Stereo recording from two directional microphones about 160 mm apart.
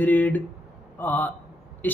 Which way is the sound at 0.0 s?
10° left (ahead or behind).